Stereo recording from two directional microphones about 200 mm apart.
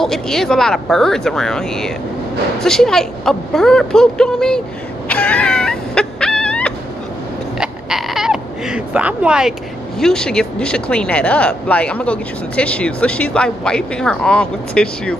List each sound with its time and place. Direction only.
0.0 s speech: centre (ahead or behind)
5.0 s a sound: 5° left (ahead or behind)
7.5 s owl: centre (ahead or behind)
9.9 s speech: 5° left (ahead or behind)